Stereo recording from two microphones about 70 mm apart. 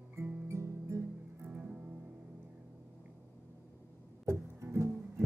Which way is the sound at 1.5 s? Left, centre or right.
Right.